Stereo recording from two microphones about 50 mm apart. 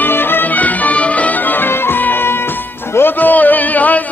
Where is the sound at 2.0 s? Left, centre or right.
Left.